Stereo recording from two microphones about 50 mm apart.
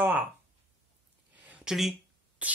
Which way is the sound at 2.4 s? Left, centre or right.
Right.